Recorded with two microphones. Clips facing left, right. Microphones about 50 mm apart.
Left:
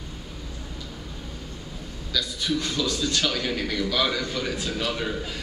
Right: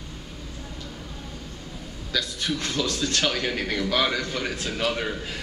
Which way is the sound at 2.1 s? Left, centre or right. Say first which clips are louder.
Left 1 dB; right.